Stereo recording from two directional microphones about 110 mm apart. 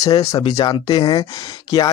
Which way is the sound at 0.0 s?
35° left (ahead or behind).